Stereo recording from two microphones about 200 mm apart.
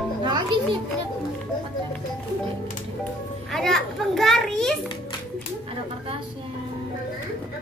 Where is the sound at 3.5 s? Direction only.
Centre (ahead or behind).